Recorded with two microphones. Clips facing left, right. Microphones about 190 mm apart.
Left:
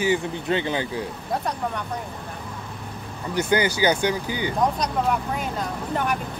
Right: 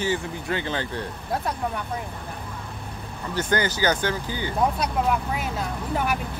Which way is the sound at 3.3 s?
10° left (ahead or behind).